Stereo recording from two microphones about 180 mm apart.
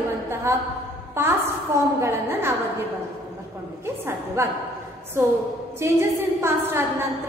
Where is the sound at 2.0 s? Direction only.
15° right (ahead or behind).